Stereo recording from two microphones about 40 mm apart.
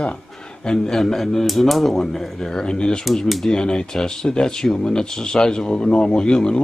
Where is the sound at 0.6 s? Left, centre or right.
Centre.